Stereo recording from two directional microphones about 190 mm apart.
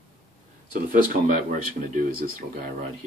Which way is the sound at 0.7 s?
45° right (ahead or behind).